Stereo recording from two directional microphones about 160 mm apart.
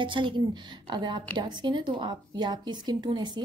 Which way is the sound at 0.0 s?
30° right (ahead or behind).